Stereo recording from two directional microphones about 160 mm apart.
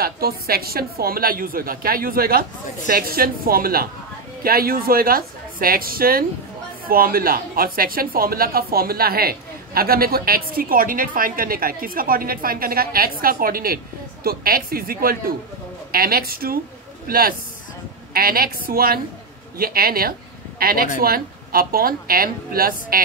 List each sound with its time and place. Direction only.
0.0 s a woman's voice: 70° right (ahead or behind)